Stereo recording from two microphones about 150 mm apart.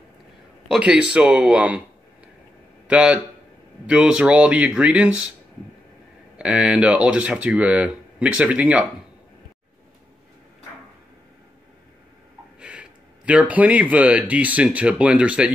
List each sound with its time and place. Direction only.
0.7 s a man's voice: 5° right (ahead or behind)
2.9 s a man's voice: 10° right (ahead or behind)
6.3 s speech: 5° right (ahead or behind)
12.5 s speech: 10° right (ahead or behind)